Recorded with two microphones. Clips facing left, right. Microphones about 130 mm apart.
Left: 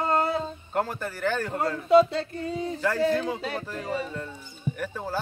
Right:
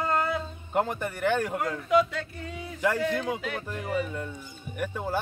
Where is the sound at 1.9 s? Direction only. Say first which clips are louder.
Left 6 dB; 30° left (ahead or behind).